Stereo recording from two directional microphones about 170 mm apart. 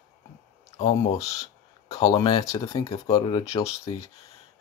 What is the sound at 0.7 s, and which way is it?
Speech, 35° left (ahead or behind).